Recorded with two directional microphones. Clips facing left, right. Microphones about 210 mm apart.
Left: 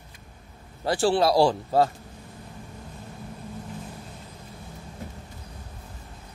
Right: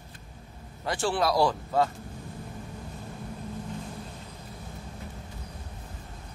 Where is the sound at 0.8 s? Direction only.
35° left (ahead or behind).